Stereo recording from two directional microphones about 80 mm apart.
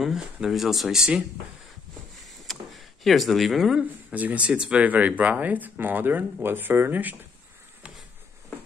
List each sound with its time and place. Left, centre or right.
0.0 s speech: centre
2.4 s a sound: centre
3.8 s speech: centre